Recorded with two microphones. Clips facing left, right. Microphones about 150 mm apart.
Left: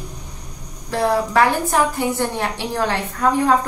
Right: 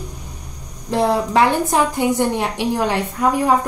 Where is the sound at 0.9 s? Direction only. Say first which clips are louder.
Right 1 dB; 20° right (ahead or behind).